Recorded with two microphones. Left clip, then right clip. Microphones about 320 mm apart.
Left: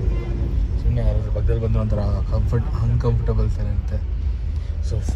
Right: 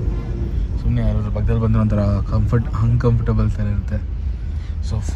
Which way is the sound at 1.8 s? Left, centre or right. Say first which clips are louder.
Right 5 dB; right.